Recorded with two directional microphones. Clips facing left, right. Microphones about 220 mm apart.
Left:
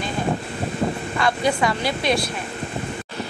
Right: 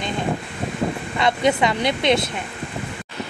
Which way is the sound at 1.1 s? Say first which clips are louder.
Right 3 dB; 20° right (ahead or behind).